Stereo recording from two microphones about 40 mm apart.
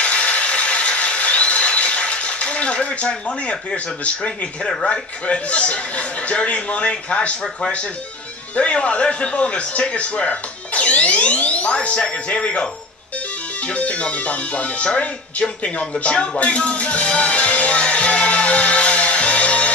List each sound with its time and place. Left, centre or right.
0.0 s a sound: left
4.8 s a man's voice: left
8.5 s a man's voice: left
12.4 s speech: left
13.7 s a man's voice: left
15.4 s speech: left
16.0 s music: left